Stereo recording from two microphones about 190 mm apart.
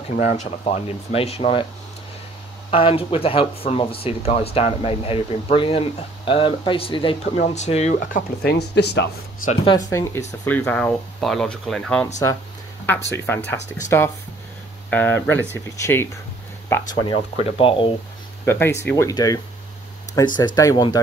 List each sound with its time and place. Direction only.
0.2 s speech: 35° left (ahead or behind)
2.7 s speech: 30° left (ahead or behind)
7.3 s speech: 35° left (ahead or behind); by 9.1 s 65° left (ahead or behind)
9.7 s speech: 15° left (ahead or behind)
18.4 s speech: 10° left (ahead or behind)